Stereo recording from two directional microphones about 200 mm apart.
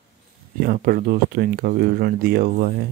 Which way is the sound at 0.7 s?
45° right (ahead or behind).